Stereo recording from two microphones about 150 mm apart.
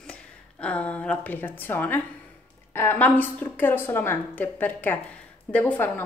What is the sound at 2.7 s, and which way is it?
A woman's voice, 15° left (ahead or behind).